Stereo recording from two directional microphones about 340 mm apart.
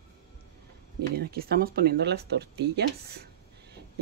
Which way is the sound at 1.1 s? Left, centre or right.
Right.